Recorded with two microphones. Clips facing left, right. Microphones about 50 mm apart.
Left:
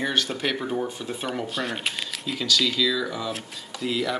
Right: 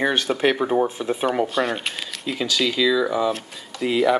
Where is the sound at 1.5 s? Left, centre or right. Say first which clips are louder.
Right 5 dB; centre.